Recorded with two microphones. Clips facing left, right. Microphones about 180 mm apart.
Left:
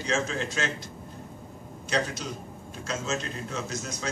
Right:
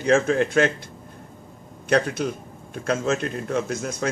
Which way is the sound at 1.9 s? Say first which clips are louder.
Right 8 dB; 55° right (ahead or behind).